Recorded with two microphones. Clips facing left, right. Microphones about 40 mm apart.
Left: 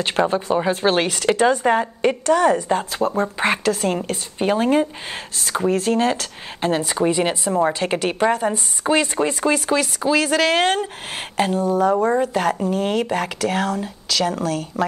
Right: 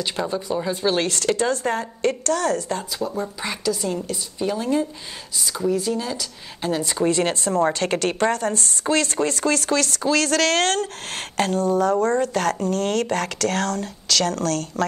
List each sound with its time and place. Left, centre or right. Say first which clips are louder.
0.0 s a woman's voice: left 6 dB; left
1.0 s speech: left 4 dB; centre
3.0 s a woman's voice: left 7 dB; left
6.8 s speech: right 2 dB; centre